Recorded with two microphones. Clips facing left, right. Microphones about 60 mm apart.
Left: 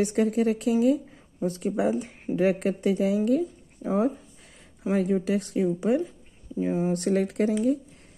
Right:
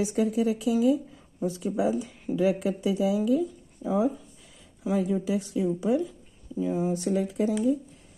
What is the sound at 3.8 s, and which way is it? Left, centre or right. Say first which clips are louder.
Speech: left 1 dB; left.